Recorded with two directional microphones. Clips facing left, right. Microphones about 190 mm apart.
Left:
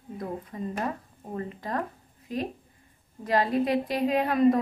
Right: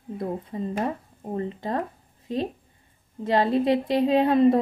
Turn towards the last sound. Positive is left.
turn(degrees=-25)  # may be behind; listen again after turning